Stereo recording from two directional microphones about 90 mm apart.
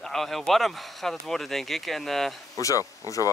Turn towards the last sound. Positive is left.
turn(degrees=40)  # may be behind; listen again after turning